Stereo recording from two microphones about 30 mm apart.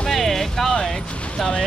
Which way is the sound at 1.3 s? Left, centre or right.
Left.